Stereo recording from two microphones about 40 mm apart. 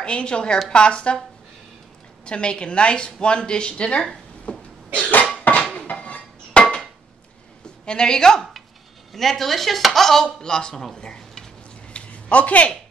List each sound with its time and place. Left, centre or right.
0.0 s speech: left
2.2 s speech: left
4.5 s cough: left
5.5 s a sound: left
5.9 s dishes: left
7.8 s chopping: centre
11.0 s stir: left
11.9 s a sound: left